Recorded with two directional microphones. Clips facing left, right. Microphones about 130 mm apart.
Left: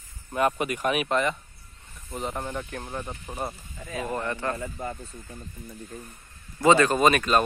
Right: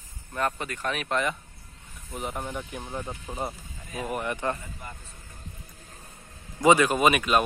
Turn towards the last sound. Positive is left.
turn(degrees=-10)  # may be behind; listen again after turning